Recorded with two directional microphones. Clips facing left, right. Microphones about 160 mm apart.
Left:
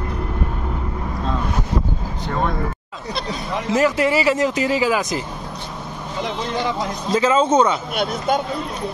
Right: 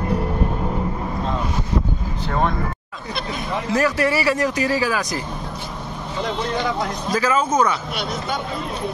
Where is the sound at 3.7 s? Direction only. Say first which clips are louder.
Left 2 dB; 20° left (ahead or behind).